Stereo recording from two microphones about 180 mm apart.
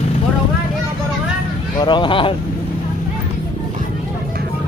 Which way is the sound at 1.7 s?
25° left (ahead or behind).